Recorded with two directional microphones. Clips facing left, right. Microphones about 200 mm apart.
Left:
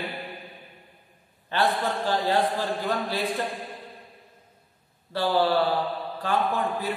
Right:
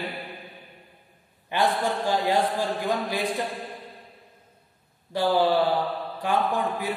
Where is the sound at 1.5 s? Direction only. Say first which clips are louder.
Right 1 dB; 15° right (ahead or behind).